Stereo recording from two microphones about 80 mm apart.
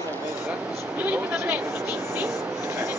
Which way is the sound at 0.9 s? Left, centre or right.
Centre.